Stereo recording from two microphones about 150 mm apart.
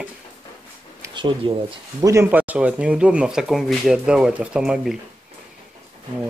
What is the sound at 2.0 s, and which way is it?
Speech, 20° right (ahead or behind).